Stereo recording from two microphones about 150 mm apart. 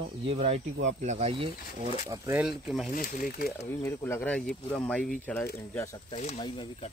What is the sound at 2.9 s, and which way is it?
Speech, 65° left (ahead or behind).